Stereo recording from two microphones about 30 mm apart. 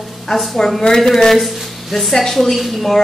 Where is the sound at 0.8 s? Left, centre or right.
Centre.